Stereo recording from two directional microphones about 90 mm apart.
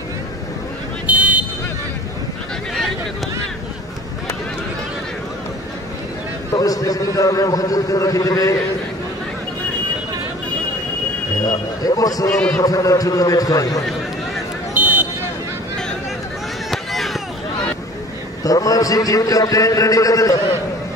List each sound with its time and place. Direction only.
1.0 s a sound: 15° right (ahead or behind)
6.5 s a man's voice: 40° left (ahead or behind)
11.4 s a man's voice: 45° left (ahead or behind)
14.7 s a sound: 15° right (ahead or behind)
16.7 s run: centre (ahead or behind)
18.4 s a man's voice: 40° left (ahead or behind)